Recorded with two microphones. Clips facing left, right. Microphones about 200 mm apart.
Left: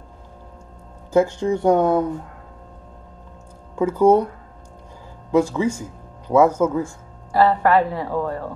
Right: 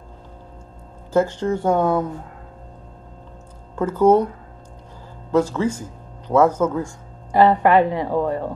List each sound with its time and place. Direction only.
1.1 s speech: 10° left (ahead or behind)
3.7 s speech: 10° left (ahead or behind)
5.3 s speech: 10° left (ahead or behind)
7.3 s a woman's voice: 15° right (ahead or behind)